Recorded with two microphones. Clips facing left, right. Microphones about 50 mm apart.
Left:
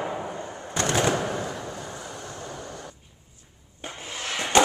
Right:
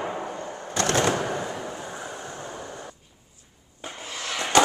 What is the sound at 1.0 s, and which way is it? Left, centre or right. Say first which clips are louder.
Fireworks: even; centre.